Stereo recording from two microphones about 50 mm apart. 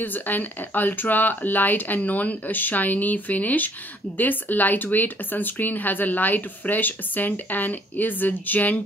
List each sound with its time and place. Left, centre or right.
0.0 s speech: left